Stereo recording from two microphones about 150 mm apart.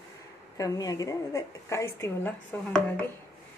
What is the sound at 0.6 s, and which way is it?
A woman's voice, 25° left (ahead or behind).